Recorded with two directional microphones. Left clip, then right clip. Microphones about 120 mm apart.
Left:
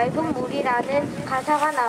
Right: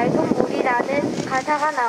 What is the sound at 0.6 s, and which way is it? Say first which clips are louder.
Speech: left 2 dB; 25° left (ahead or behind).